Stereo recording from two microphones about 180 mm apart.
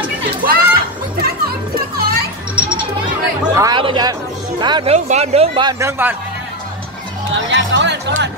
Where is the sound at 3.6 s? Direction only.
25° right (ahead or behind).